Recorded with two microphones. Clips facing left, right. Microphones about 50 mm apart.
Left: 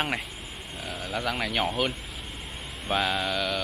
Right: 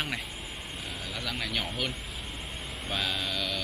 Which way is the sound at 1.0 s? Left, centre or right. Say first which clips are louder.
Left 7 dB; left.